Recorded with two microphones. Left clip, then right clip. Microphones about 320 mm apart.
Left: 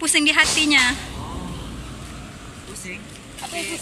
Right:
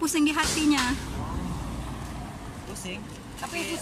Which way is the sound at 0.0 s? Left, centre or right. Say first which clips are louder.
Left 8 dB; centre.